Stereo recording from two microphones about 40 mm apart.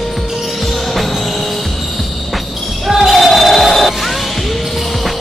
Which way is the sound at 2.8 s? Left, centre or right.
Centre.